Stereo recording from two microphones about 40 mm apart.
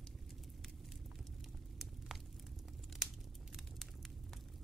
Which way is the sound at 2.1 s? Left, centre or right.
Centre.